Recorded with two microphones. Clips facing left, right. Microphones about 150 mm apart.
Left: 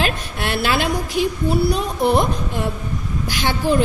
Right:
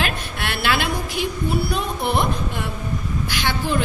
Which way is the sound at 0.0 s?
40° left (ahead or behind).